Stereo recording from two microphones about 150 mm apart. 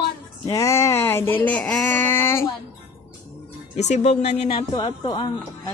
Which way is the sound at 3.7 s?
50° left (ahead or behind).